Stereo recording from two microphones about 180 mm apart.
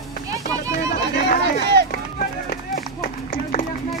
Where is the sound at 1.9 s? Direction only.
50° left (ahead or behind).